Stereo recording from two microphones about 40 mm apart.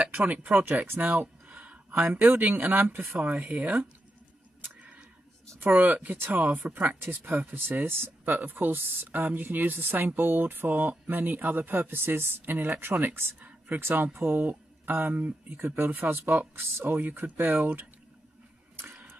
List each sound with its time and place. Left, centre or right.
0.1 s a woman's voice: right
1.5 s a sound: right
2.2 s speech: right
3.2 s speech: right
5.7 s a woman's voice: right
6.1 s speech: right
6.4 s a woman's voice: right
7.0 s speech: right
7.8 s speech: right
8.3 s a woman's voice: right
10.7 s speech: right
13.1 s speech: right
13.7 s speech: right